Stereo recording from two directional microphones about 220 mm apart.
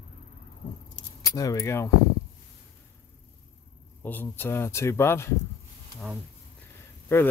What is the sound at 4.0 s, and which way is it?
Speech, 10° left (ahead or behind).